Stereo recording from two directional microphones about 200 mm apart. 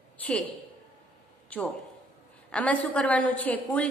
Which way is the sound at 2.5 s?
5° left (ahead or behind).